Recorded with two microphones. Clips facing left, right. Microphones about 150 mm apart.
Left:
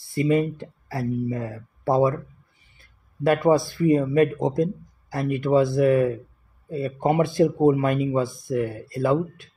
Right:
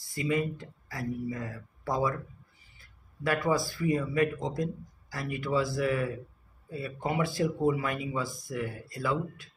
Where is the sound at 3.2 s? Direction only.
55° left (ahead or behind).